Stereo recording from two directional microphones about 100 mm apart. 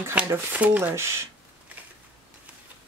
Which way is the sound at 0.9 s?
30° right (ahead or behind).